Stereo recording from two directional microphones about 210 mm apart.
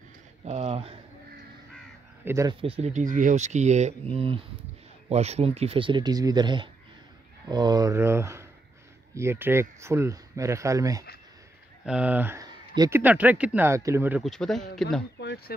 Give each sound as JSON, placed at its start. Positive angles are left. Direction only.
{"t": 0.5, "sound": "speech", "side_deg": -30}
{"t": 2.2, "sound": "speech", "side_deg": -15}
{"t": 2.6, "sound": "speech", "side_deg": -30}
{"t": 11.8, "sound": "speech", "side_deg": -5}
{"t": 13.0, "sound": "speech", "side_deg": -5}
{"t": 15.1, "sound": "a sound", "side_deg": 55}